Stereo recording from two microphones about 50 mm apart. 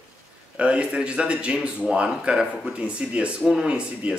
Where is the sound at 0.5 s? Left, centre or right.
Right.